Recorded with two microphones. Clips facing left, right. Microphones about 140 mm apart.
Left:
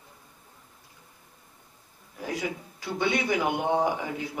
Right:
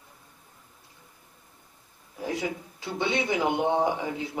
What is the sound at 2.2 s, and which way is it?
A man's voice, 25° right (ahead or behind).